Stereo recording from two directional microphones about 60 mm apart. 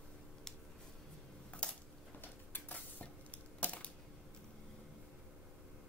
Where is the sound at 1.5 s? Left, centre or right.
Left.